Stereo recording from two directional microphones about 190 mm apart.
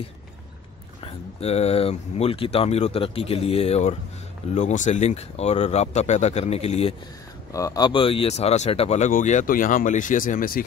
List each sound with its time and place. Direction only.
1.0 s speech: 35° left (ahead or behind)
7.5 s speech: 20° left (ahead or behind); by 10.6 s 45° left (ahead or behind)